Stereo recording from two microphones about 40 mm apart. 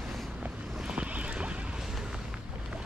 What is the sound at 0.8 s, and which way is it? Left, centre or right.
Boat, right.